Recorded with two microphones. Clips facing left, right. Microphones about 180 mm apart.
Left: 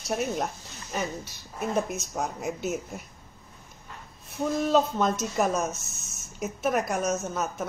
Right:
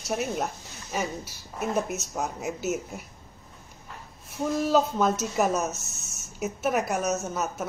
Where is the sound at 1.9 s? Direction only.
5° right (ahead or behind).